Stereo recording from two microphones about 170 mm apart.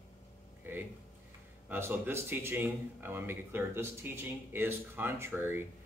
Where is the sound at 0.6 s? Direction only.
10° right (ahead or behind).